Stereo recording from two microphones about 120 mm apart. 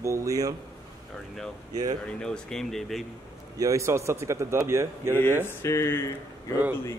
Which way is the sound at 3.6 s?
25° right (ahead or behind).